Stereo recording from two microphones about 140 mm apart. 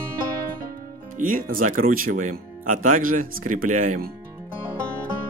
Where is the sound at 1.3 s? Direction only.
80° right.